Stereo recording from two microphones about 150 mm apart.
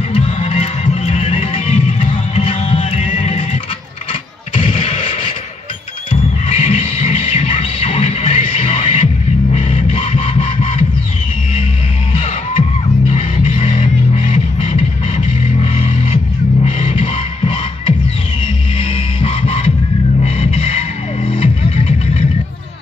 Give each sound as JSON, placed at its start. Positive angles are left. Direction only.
{"t": 0.1, "sound": "music", "side_deg": 45}
{"t": 4.6, "sound": "artillery fire", "side_deg": 35}
{"t": 6.5, "sound": "music", "side_deg": 45}
{"t": 12.1, "sound": "music", "side_deg": 35}